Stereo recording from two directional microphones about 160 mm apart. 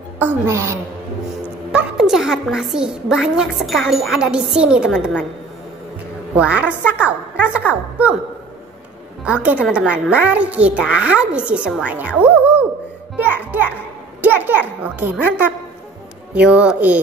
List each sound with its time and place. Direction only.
0.2 s a child's voice: 15° right (ahead or behind)
1.7 s a woman's voice: 5° right (ahead or behind)
6.3 s a child's voice: 10° right (ahead or behind)
9.2 s a child's voice: 5° right (ahead or behind)
16.3 s a child's voice: 5° right (ahead or behind)